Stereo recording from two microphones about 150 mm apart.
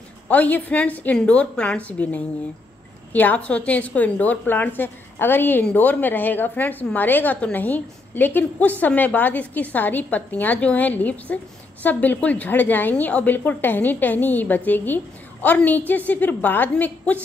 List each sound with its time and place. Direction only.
0.3 s a woman's voice: 10° left (ahead or behind)